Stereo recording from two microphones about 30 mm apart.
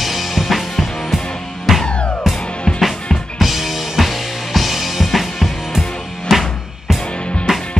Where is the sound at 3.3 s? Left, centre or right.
Centre.